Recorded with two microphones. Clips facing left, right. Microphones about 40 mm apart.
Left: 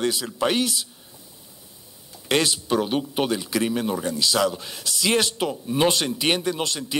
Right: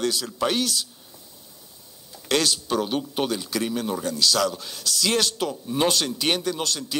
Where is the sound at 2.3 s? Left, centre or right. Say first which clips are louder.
Left 1 dB; left.